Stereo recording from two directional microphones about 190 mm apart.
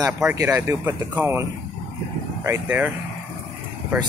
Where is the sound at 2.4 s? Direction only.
10° right (ahead or behind).